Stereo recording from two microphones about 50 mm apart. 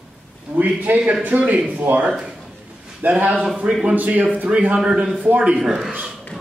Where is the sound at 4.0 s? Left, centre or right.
Right.